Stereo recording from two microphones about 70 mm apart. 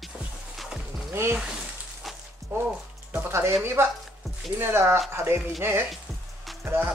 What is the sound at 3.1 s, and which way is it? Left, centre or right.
Speech, right.